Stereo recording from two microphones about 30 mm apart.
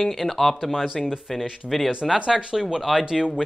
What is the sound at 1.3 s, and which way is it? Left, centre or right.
Speech, centre.